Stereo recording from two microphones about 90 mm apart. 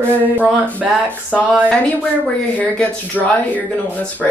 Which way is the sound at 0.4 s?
15° right (ahead or behind).